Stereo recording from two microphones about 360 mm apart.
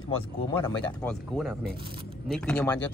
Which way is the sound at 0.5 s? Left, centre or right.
Centre.